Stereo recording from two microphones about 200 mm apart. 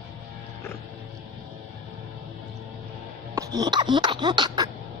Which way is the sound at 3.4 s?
20° right (ahead or behind).